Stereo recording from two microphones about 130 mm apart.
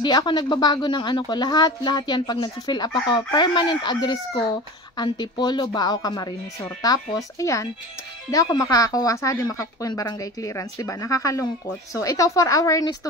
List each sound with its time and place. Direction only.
0.0 s a woman's voice: 35° left (ahead or behind)